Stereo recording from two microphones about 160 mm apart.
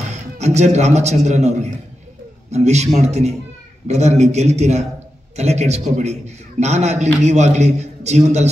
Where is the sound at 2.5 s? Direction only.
45° right (ahead or behind).